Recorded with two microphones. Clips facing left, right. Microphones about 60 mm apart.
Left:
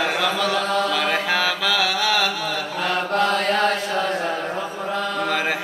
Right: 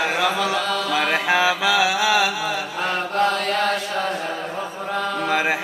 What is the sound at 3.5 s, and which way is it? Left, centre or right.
Chant, left.